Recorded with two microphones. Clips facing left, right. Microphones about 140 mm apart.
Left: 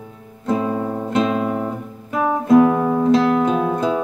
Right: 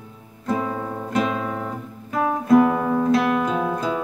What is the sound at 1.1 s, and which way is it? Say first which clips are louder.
Guitar: left 4 dB; 25° left (ahead or behind).